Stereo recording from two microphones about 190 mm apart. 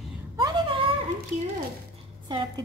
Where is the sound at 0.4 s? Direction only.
25° right (ahead or behind).